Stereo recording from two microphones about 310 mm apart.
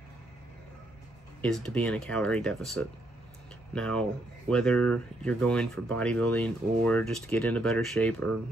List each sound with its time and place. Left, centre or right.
1.4 s speech: centre